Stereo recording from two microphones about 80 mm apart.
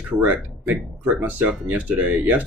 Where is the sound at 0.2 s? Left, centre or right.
Centre.